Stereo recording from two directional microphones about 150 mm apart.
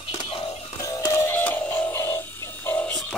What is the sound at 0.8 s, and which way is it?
Music, 20° left (ahead or behind).